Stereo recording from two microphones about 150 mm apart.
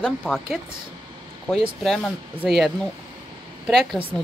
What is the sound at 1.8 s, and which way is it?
Speech, 5° left (ahead or behind).